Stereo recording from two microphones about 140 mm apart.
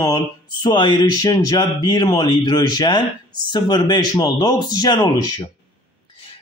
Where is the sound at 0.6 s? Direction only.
35° left (ahead or behind).